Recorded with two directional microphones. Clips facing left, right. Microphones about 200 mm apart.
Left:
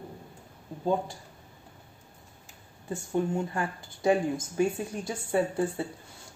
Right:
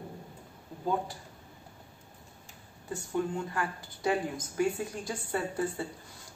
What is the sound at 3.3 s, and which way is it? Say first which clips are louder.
Speech: left 3 dB; 25° left (ahead or behind).